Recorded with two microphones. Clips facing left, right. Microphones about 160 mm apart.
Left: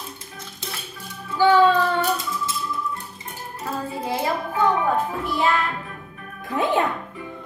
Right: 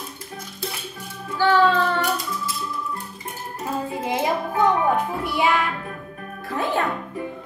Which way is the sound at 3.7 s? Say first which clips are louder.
Right 2 dB; 20° right (ahead or behind).